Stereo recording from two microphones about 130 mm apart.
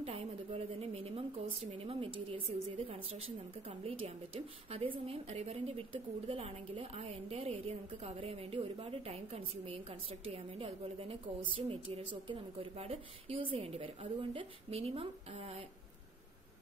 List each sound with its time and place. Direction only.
0.0 s a woman's voice: 50° right (ahead or behind)